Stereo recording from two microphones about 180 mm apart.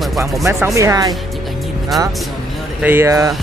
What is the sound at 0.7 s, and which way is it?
Speech, 20° right (ahead or behind).